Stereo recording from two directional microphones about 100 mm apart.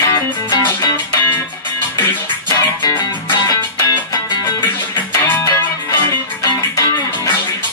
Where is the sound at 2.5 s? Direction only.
35° left (ahead or behind).